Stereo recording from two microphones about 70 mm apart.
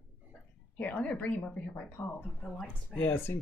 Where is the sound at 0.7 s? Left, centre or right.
Centre.